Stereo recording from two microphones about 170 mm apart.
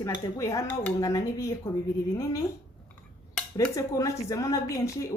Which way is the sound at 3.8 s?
20° left (ahead or behind).